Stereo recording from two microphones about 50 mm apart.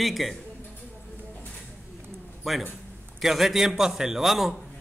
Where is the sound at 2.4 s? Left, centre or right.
Centre.